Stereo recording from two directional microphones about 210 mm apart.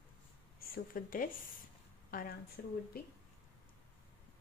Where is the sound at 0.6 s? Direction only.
40° left (ahead or behind).